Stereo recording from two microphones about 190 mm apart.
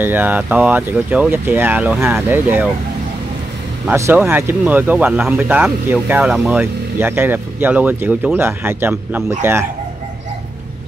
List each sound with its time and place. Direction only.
0.0 s speech: 10° right (ahead or behind)
3.8 s speech: 10° right (ahead or behind)